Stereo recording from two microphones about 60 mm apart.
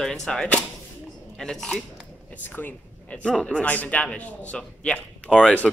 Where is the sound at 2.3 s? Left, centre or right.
Left.